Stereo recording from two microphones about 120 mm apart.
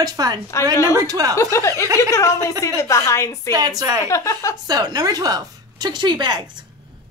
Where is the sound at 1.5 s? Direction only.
25° left (ahead or behind).